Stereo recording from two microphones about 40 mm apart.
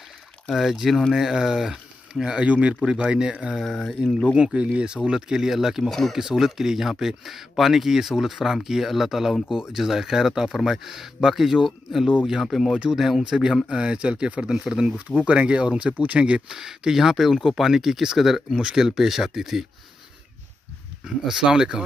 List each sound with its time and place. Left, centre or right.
0.5 s speech: centre
2.4 s speech: right
2.8 s speech: right
3.6 s speech: centre
4.6 s speech: right
5.9 s speech: centre
6.1 s speech: centre
14.9 s speech: right
16.4 s speech: centre
21.0 s speech: centre